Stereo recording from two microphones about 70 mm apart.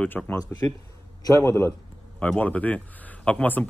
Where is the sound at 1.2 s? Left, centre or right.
Left.